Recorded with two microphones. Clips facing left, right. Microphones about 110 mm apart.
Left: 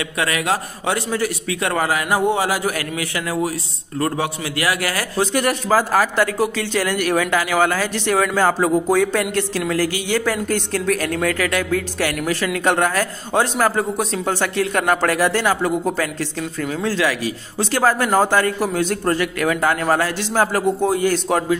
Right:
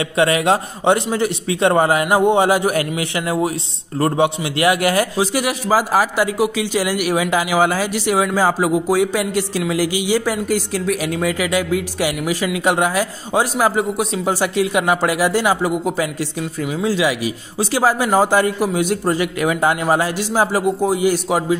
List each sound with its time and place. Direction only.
0.0 s a man's voice: 25° right (ahead or behind)
5.2 s speech: 5° right (ahead or behind)